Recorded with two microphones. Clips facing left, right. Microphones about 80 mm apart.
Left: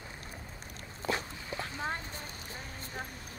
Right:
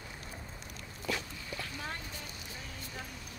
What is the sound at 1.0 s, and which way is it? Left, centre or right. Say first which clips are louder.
Dog: left 3 dB; left.